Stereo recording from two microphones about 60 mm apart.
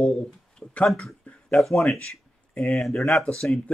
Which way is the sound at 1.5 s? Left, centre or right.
Centre.